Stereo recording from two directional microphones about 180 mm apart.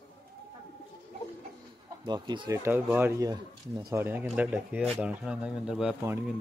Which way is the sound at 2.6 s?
10° right (ahead or behind).